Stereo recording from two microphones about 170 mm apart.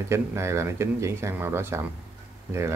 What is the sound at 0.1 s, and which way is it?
Speech, 15° right (ahead or behind).